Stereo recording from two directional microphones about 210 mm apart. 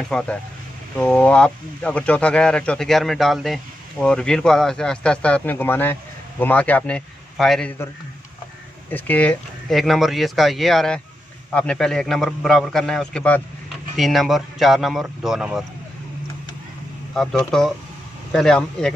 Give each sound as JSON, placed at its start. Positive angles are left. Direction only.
{"t": 0.1, "sound": "speech", "side_deg": 5}
{"t": 8.9, "sound": "speech", "side_deg": 5}
{"t": 17.1, "sound": "speech", "side_deg": 0}